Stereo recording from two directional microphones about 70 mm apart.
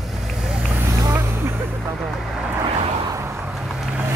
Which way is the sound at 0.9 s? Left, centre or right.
Right.